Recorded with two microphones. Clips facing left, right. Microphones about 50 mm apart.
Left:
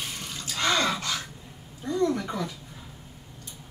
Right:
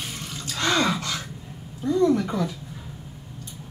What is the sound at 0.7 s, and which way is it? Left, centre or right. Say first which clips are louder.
Gasp: right 4 dB; centre.